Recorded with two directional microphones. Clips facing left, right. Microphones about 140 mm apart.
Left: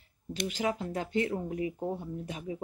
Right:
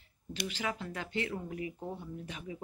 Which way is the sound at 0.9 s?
40° left (ahead or behind).